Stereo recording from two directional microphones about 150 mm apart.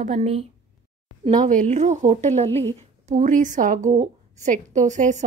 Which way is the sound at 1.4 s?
55° right (ahead or behind).